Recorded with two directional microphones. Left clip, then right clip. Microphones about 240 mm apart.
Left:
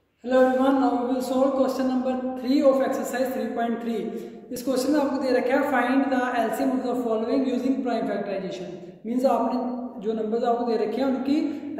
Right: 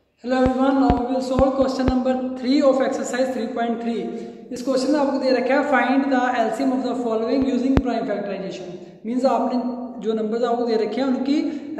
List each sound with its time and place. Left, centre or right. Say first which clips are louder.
0.3 s speech: even; centre